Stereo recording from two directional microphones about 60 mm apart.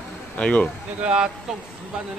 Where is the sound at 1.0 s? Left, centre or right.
Centre.